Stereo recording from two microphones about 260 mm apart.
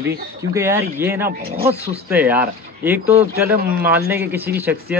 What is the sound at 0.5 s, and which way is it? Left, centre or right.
Speech, centre.